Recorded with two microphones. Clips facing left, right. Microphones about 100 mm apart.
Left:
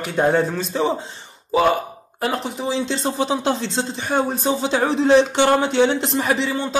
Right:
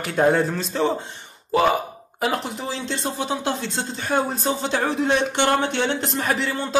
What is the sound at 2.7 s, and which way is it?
Speech, 20° left (ahead or behind).